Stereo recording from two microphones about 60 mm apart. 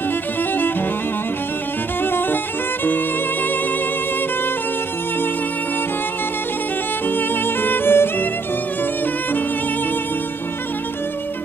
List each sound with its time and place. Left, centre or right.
0.4 s music: left
2.0 s music: left
7.1 s violin: left